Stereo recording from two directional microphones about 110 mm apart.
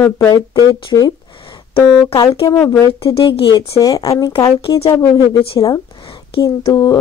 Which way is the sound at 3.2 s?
50° left (ahead or behind).